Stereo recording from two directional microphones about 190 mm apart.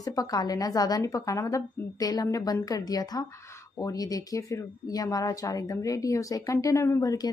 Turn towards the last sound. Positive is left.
turn(degrees=20)  # may be behind; listen again after turning